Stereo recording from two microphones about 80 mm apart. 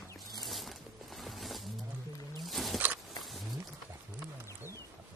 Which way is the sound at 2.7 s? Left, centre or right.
Right.